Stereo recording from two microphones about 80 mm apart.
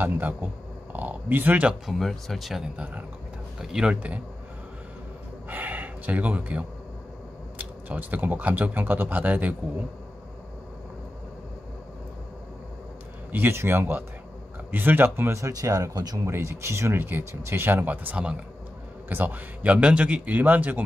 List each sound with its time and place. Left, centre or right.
0.0 s speech: right
1.9 s speech: centre
3.6 s speech: centre
5.5 s speech: right
13.3 s speech: right
16.3 s speech: right